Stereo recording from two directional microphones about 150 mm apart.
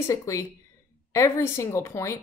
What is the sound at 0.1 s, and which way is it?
Speech, 20° left (ahead or behind).